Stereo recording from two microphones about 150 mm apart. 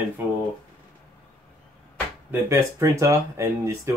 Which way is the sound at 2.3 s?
20° right (ahead or behind).